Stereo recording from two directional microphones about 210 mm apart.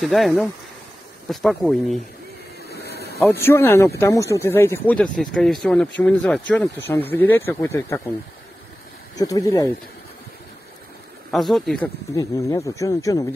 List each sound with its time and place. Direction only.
0.0 s speech: centre (ahead or behind)
2.7 s a sound: 50° left (ahead or behind)
3.4 s speech: 10° left (ahead or behind)
9.1 s speech: 15° left (ahead or behind)
11.3 s speech: centre (ahead or behind)
12.2 s speech: 15° left (ahead or behind)